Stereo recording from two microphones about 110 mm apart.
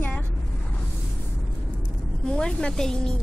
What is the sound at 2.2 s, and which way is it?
Speech, 10° left (ahead or behind).